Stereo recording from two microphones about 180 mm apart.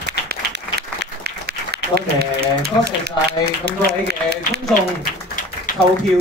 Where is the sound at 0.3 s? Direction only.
65° right (ahead or behind).